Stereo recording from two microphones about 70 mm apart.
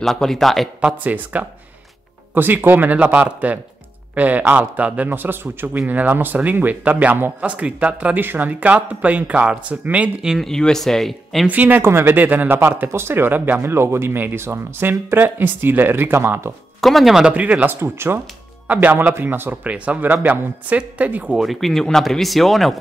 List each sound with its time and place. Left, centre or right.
0.0 s speech: centre
0.7 s a man's voice: centre
10.4 s speech: centre
11.4 s a man's voice: right
12.5 s speech: right
16.8 s speech: centre
17.3 s a man's voice: right
17.7 s speech: right
18.7 s a man's voice: right
21.4 s speech: centre